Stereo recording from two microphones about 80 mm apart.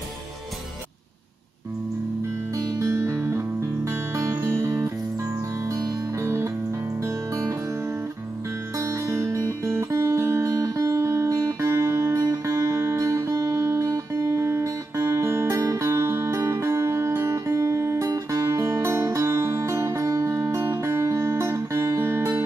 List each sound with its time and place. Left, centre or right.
2.5 s music: right
6.1 s music: right